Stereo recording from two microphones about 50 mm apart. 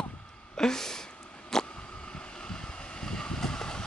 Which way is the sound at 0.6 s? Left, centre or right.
Centre.